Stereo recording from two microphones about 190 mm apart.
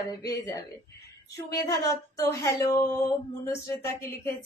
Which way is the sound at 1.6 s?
15° left (ahead or behind).